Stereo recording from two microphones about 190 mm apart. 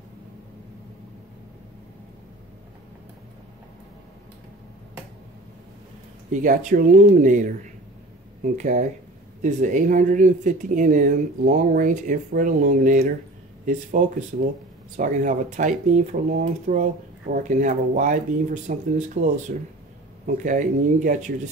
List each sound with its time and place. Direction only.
6.3 s speech: 40° right (ahead or behind)
8.5 s speech: 40° right (ahead or behind)